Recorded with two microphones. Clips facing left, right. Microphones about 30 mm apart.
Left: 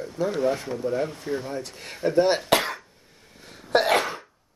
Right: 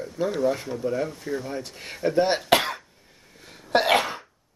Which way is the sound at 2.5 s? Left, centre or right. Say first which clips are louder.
Right 1 dB; centre.